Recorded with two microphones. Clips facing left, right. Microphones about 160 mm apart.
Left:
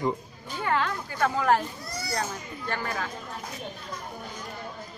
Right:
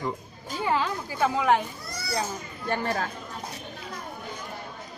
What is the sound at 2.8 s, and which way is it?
Speech, 40° right (ahead or behind).